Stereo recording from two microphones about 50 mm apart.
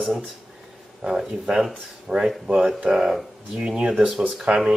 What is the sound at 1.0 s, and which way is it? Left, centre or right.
A man's voice, centre.